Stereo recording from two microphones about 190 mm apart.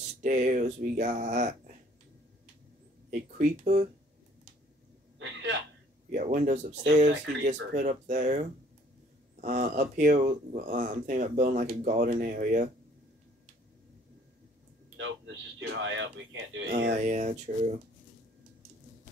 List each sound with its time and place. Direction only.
0.2 s speech: 40° right (ahead or behind)
3.1 s speech: 45° right (ahead or behind)
5.2 s a sound: 70° right (ahead or behind)
6.1 s speech: 45° right (ahead or behind)
6.7 s speech: 65° right (ahead or behind)
7.7 s speech: 45° right (ahead or behind)
15.0 s speech: 80° right
16.9 s speech: 40° right (ahead or behind)